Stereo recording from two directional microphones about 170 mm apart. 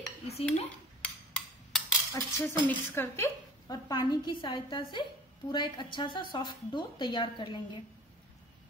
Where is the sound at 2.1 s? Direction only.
15° left (ahead or behind).